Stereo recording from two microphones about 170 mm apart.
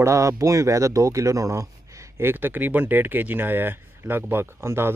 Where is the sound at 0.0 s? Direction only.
15° right (ahead or behind).